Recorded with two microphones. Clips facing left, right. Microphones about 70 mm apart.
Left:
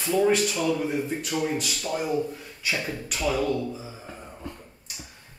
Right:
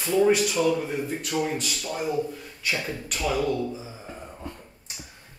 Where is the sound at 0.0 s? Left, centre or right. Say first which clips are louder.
Right 1 dB; centre.